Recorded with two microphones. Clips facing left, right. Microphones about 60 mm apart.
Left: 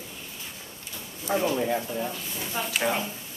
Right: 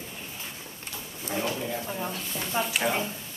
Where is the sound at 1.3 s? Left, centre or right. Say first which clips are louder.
Left 6 dB; left.